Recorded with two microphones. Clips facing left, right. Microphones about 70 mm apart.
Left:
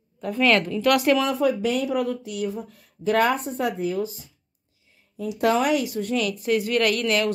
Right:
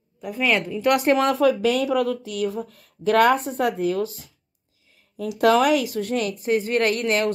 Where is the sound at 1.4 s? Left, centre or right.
Right.